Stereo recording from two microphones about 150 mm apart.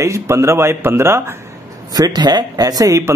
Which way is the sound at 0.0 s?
20° right (ahead or behind).